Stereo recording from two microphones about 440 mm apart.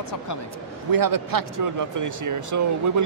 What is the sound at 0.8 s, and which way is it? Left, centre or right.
Speech, right.